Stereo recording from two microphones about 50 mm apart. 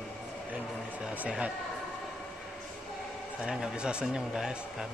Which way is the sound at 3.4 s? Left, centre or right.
Centre.